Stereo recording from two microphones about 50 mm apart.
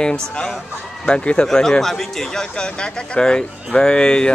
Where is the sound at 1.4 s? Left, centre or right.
Centre.